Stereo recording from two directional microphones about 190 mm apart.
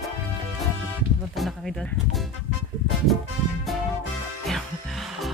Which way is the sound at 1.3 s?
Centre (ahead or behind).